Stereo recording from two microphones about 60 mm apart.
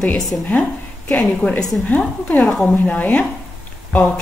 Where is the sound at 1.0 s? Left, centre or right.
Left.